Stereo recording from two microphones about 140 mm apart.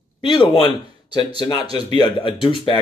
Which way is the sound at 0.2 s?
40° left (ahead or behind).